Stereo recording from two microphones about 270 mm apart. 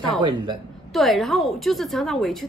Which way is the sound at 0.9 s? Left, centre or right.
Centre.